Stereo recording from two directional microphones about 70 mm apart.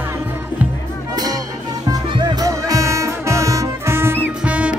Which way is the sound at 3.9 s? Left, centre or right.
Right.